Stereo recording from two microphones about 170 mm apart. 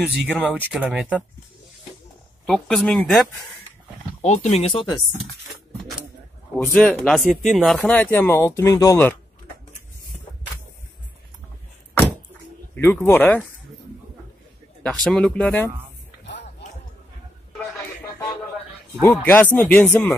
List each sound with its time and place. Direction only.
0.3 s speech: 5° right (ahead or behind)
2.4 s speech: 5° left (ahead or behind)
4.2 s speech: 40° left (ahead or behind)
6.5 s speech: 5° left (ahead or behind)
12.7 s speech: 10° left (ahead or behind)
14.8 s speech: 5° left (ahead or behind)
19.0 s speech: 10° left (ahead or behind)